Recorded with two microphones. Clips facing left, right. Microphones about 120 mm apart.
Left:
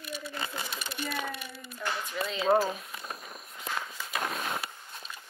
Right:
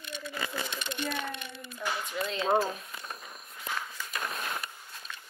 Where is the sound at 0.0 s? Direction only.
5° left (ahead or behind).